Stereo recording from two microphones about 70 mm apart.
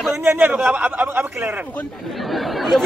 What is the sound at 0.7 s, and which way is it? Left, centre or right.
A man's voice, right.